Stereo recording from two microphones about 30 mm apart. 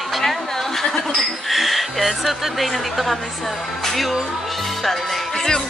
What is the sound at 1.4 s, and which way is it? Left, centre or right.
Speech, centre.